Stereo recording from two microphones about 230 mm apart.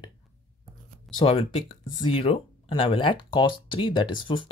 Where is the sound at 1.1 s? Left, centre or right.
Left.